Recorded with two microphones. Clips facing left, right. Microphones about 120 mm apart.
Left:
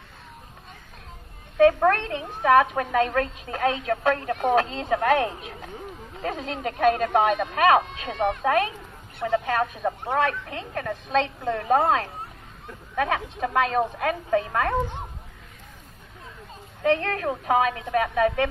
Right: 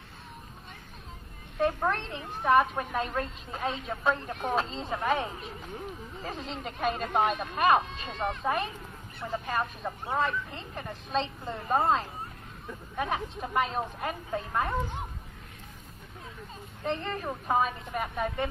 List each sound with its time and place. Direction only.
1.6 s a woman's voice: 70° left (ahead or behind)
16.8 s a woman's voice: 75° left (ahead or behind)